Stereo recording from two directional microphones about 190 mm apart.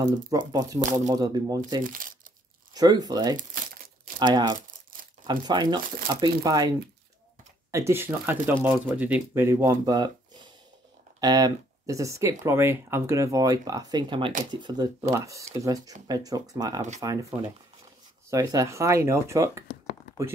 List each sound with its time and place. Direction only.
0.0 s speech: 20° right (ahead or behind)
1.8 s speech: 45° right (ahead or behind)
2.7 s speech: 20° right (ahead or behind)
3.3 s crumpling: 45° right (ahead or behind)
4.2 s speech: 20° right (ahead or behind)
4.6 s a sound: 45° right (ahead or behind)
5.2 s speech: 25° right (ahead or behind)
7.7 s speech: 15° right (ahead or behind)
18.3 s speech: 20° right (ahead or behind)